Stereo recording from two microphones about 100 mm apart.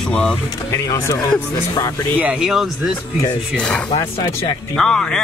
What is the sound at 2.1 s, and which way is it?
Speech, 15° right (ahead or behind).